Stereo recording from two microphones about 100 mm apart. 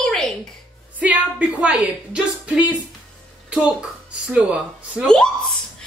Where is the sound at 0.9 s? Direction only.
15° right (ahead or behind).